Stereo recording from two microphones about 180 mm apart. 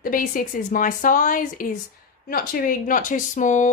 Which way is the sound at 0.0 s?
50° left (ahead or behind).